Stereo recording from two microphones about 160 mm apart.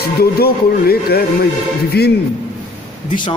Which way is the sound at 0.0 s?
75° left (ahead or behind).